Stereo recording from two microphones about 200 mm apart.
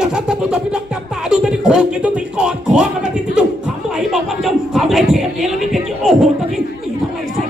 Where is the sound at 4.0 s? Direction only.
Centre (ahead or behind).